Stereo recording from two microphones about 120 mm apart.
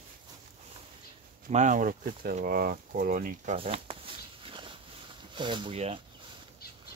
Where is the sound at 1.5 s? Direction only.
90° right.